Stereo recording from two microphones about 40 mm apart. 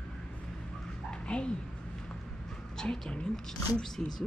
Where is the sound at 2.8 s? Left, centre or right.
Left.